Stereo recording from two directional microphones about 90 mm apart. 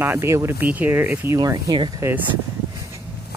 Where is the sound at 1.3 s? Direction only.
45° right (ahead or behind).